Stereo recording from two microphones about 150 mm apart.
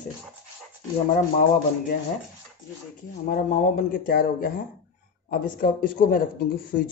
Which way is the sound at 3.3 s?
65° left (ahead or behind).